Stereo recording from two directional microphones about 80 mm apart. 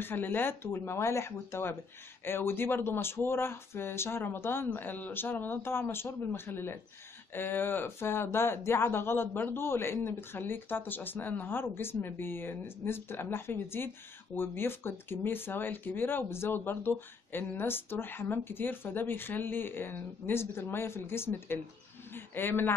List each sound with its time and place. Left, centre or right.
0.0 s speech: left